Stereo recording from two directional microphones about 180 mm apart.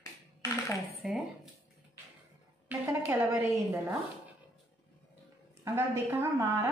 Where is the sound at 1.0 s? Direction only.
Centre (ahead or behind).